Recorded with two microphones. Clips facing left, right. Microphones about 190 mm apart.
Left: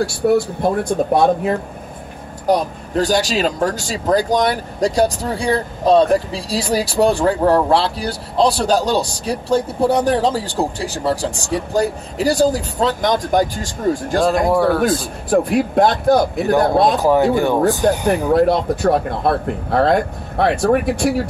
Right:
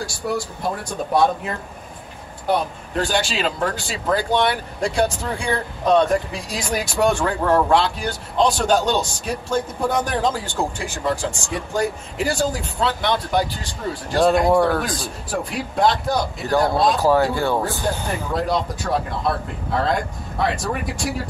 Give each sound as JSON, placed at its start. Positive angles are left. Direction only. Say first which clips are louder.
{"t": 0.0, "sound": "speech", "louder": "left 10 dB", "side_deg": 60}
{"t": 2.4, "sound": "speech", "louder": "left 4 dB", "side_deg": 40}
{"t": 14.2, "sound": "speech", "louder": "even", "side_deg": 0}
{"t": 15.2, "sound": "speech", "louder": "left 12 dB", "side_deg": 50}
{"t": 17.0, "sound": "speech", "louder": "left 4 dB", "side_deg": 20}
{"t": 18.3, "sound": "speech", "louder": "left 7 dB", "side_deg": 55}